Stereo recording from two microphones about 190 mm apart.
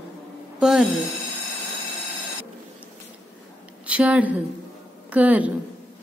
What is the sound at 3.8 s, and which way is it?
A woman's voice, 5° right (ahead or behind).